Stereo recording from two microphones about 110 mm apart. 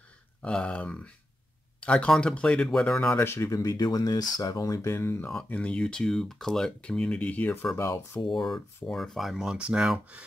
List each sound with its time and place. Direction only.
0.4 s speech: 10° left (ahead or behind)
3.2 s speech: 25° left (ahead or behind)
5.2 s speech: 5° left (ahead or behind)
7.7 s speech: 25° left (ahead or behind)
8.3 s speech: centre (ahead or behind)